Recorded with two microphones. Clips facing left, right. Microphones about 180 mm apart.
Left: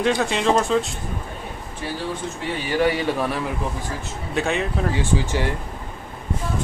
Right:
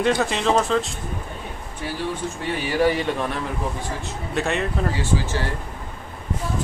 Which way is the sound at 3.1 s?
5° left (ahead or behind).